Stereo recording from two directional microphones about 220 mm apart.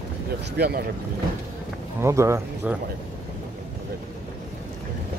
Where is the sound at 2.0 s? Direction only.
15° right (ahead or behind).